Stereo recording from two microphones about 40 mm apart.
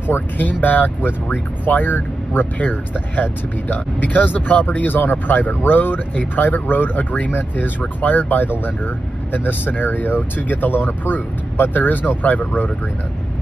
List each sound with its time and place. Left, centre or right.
0.0 s speech: left
6.1 s speech: left